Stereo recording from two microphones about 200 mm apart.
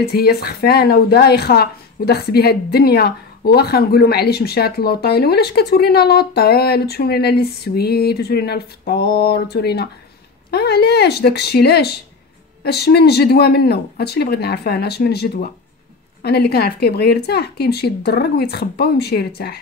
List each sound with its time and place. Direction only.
0.1 s a woman's voice: 50° left (ahead or behind)